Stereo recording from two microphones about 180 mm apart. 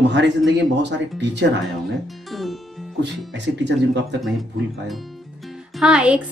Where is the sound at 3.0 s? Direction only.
75° right (ahead or behind).